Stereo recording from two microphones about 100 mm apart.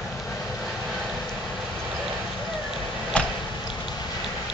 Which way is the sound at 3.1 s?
10° left (ahead or behind).